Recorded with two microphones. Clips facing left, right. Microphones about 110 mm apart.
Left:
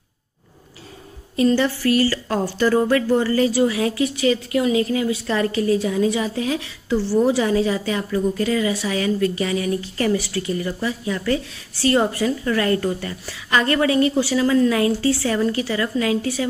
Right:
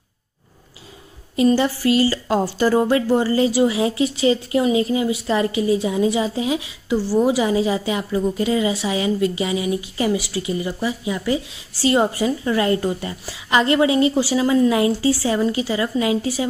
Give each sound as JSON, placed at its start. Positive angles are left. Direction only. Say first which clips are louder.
{"t": 1.3, "sound": "a woman's voice", "louder": "right 1 dB", "side_deg": -20}